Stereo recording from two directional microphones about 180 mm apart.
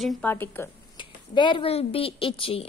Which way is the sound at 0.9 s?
25° left (ahead or behind).